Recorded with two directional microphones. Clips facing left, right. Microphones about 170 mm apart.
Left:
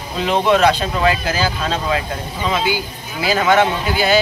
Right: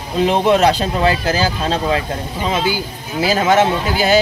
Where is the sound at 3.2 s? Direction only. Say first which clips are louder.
Right 1 dB; 40° right (ahead or behind).